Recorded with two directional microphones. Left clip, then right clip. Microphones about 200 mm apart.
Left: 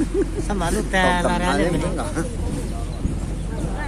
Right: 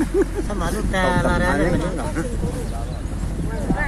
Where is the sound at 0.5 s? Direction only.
20° left (ahead or behind).